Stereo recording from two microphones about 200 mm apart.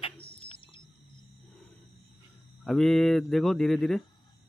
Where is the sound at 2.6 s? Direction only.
Centre (ahead or behind).